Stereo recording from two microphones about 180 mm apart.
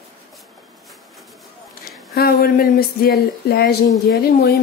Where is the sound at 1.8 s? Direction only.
55° left (ahead or behind).